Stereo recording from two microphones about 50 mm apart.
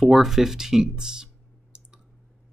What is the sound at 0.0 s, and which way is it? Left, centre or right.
Speech, centre.